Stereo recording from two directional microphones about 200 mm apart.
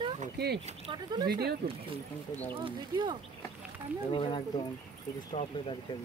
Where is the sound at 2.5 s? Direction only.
25° right (ahead or behind).